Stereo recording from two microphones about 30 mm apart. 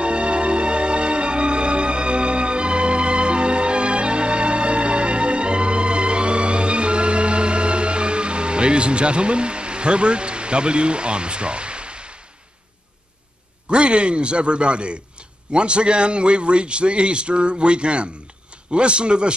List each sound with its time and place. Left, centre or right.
0.0 s music: right
13.7 s a man's voice: right